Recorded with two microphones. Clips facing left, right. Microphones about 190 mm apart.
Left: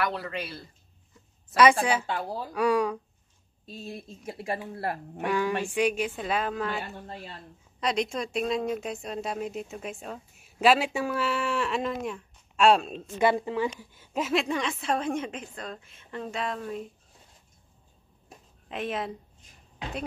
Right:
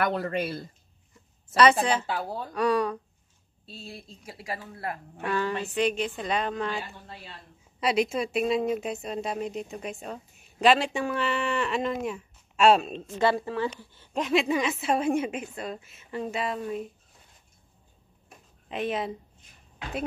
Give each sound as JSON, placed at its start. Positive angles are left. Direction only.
{"t": 0.0, "sound": "speech", "side_deg": -50}
{"t": 1.6, "sound": "speech", "side_deg": 10}
{"t": 2.0, "sound": "a woman's voice", "side_deg": 0}
{"t": 5.1, "sound": "speech", "side_deg": 10}
{"t": 7.8, "sound": "speech", "side_deg": -5}
{"t": 13.2, "sound": "speech", "side_deg": 20}
{"t": 18.7, "sound": "speech", "side_deg": 0}